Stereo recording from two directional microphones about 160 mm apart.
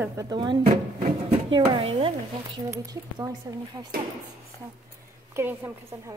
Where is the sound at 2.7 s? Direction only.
20° right (ahead or behind).